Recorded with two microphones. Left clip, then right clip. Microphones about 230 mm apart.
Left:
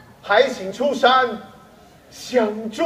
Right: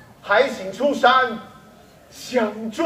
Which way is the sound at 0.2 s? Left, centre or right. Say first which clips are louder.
Left 1 dB; left.